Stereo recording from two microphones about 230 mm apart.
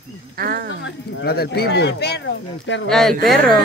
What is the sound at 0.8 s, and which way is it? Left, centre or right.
Speech, left.